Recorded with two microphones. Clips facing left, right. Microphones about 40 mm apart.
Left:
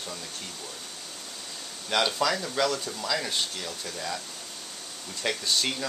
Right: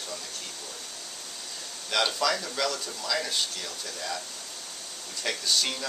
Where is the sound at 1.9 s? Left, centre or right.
Centre.